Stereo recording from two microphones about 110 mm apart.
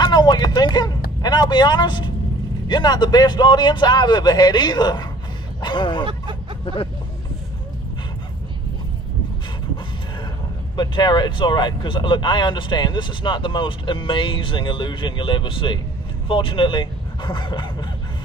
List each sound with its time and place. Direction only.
0.0 s a sound: 40° left (ahead or behind)
2.7 s a man's voice: 40° left (ahead or behind)
10.8 s speech: 45° left (ahead or behind)